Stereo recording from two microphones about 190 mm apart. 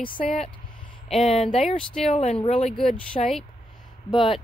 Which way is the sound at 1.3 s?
35° left (ahead or behind).